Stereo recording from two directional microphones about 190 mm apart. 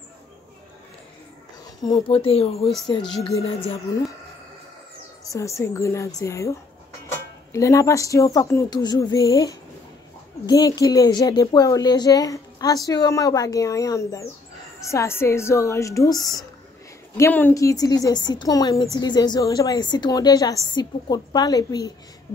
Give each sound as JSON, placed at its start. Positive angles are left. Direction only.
{"t": 2.0, "sound": "speech", "side_deg": 30}
{"t": 3.0, "sound": "speech", "side_deg": 0}
{"t": 5.3, "sound": "speech", "side_deg": 15}
{"t": 7.5, "sound": "speech", "side_deg": 15}